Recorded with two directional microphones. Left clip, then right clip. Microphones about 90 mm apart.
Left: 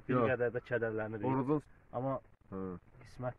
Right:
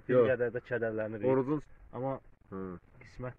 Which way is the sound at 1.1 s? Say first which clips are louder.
Right 4 dB; 30° left (ahead or behind).